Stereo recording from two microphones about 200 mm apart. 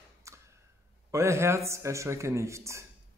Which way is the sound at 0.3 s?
15° right (ahead or behind).